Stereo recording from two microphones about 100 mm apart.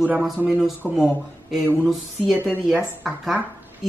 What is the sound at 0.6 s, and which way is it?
Speech, 5° right (ahead or behind).